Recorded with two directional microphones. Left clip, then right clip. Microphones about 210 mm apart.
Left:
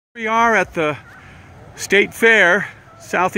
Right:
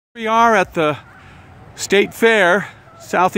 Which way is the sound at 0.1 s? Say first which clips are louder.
Right 2 dB; 25° right (ahead or behind).